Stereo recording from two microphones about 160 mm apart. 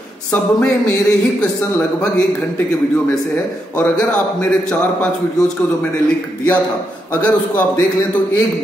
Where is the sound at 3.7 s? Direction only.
10° left (ahead or behind).